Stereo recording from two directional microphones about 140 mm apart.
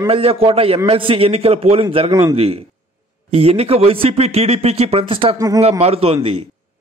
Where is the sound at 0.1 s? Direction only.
45° right (ahead or behind).